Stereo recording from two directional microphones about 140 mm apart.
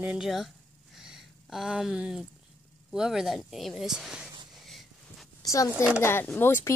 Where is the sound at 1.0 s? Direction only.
5° right (ahead or behind).